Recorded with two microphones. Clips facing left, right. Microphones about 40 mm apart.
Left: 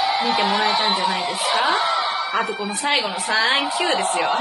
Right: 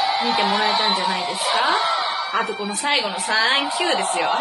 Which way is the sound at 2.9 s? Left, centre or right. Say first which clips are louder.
Even; centre.